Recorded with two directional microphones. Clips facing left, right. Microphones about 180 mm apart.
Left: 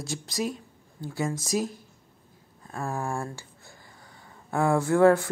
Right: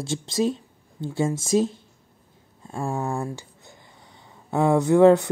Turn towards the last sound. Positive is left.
turn(degrees=-20)  # may be behind; listen again after turning